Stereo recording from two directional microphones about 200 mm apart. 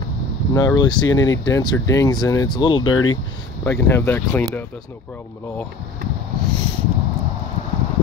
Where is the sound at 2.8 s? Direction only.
90° left.